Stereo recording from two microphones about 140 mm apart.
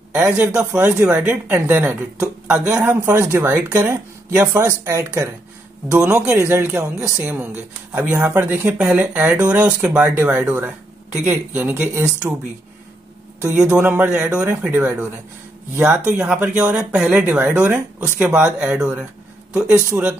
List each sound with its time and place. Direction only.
0.1 s speech: 5° right (ahead or behind)
4.4 s speech: 25° right (ahead or behind)
6.3 s speech: 15° right (ahead or behind)
10.0 s speech: 20° right (ahead or behind)
13.4 s speech: 10° right (ahead or behind)